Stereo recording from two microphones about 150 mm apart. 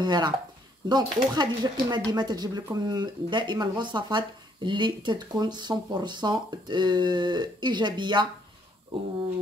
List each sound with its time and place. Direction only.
0.0 s speech: 30° right (ahead or behind)